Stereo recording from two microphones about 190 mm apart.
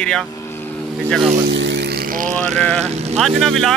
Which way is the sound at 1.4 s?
65° right (ahead or behind).